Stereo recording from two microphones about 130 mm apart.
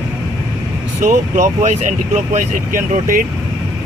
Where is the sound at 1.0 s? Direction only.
75° right (ahead or behind); by 3.2 s 90° right.